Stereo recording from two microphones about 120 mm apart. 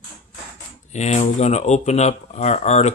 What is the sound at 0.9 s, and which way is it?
Speech, 70° left (ahead or behind).